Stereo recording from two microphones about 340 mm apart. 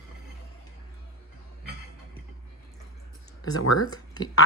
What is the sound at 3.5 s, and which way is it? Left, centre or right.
Speech, left.